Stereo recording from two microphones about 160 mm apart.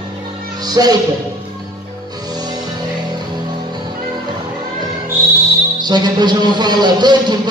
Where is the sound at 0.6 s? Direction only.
25° right (ahead or behind).